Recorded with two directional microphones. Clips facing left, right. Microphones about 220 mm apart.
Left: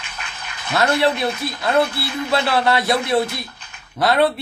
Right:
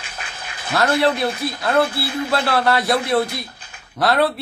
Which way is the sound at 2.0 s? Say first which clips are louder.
Right 2 dB; 30° right (ahead or behind).